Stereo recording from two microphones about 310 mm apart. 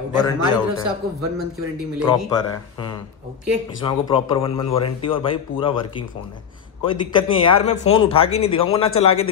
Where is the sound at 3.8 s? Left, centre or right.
Centre.